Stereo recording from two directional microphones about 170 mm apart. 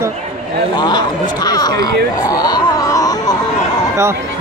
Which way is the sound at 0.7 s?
25° left (ahead or behind).